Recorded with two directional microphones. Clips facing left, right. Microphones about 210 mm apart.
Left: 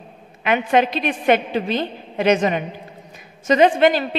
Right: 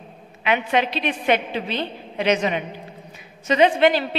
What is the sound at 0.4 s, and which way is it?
A woman's voice, 45° left (ahead or behind).